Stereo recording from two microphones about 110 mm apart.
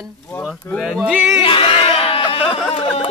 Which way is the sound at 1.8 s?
60° left (ahead or behind).